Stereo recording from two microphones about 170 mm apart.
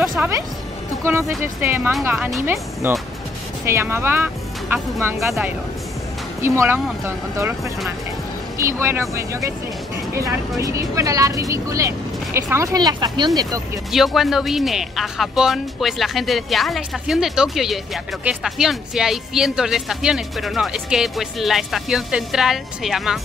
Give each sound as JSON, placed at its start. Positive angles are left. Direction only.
{"t": 0.0, "sound": "speech", "side_deg": -5}
{"t": 2.4, "sound": "speech", "side_deg": -15}
{"t": 6.4, "sound": "speech", "side_deg": -15}
{"t": 13.9, "sound": "speech", "side_deg": 0}